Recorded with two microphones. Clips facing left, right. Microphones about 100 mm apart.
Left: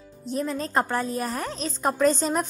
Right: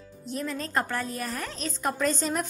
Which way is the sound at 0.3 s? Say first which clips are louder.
Left 4 dB; 30° left (ahead or behind).